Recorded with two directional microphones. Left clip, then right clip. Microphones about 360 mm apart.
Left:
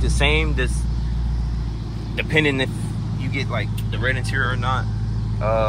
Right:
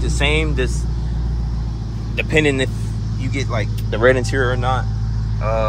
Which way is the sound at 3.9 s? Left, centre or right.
Right.